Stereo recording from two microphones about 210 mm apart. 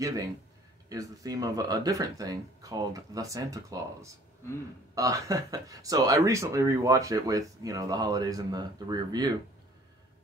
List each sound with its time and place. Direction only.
0.8 s speech: 15° right (ahead or behind)